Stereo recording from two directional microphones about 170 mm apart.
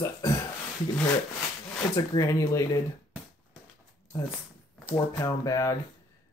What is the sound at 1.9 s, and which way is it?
Speech, 20° left (ahead or behind).